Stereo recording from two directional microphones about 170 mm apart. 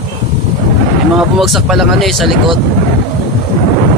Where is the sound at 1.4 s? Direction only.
Centre (ahead or behind).